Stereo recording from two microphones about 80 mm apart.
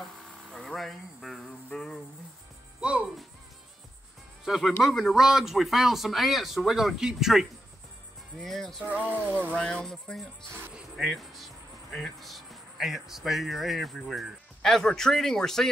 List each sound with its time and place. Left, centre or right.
0.0 s cricket: centre
2.8 s music: centre
4.5 s speech: centre
9.1 s speech: right
9.5 s speech: centre
10.7 s speech: centre